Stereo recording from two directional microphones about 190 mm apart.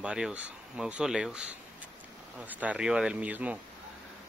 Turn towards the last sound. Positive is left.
turn(degrees=-5)  # may be behind; listen again after turning